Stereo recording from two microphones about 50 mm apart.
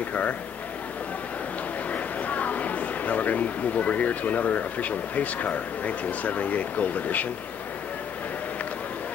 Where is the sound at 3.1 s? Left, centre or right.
Left.